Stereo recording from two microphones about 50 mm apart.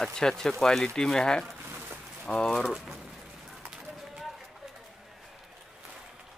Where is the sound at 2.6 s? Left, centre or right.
Centre.